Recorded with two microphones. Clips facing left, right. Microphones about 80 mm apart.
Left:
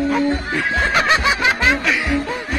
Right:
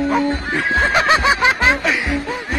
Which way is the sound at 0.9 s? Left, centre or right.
Right.